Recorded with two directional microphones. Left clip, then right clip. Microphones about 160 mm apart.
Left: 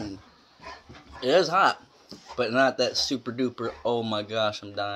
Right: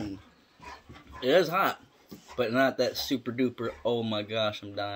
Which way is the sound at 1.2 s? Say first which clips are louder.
Left 3 dB; 20° right (ahead or behind).